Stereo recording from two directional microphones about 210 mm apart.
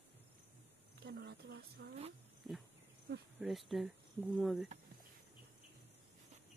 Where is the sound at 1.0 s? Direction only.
55° right (ahead or behind).